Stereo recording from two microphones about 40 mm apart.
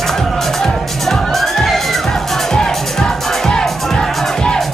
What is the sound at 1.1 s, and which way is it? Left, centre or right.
Music, centre.